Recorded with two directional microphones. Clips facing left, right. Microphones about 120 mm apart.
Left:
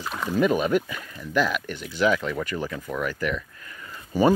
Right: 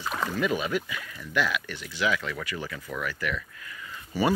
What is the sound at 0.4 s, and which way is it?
Speech, 45° left (ahead or behind).